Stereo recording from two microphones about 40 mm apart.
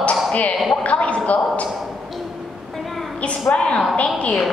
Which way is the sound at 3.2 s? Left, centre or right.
Left.